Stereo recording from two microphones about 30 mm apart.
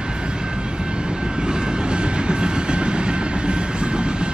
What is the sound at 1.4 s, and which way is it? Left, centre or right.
Train, right.